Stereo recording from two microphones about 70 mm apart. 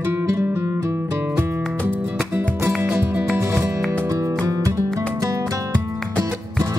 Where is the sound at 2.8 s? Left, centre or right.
Right.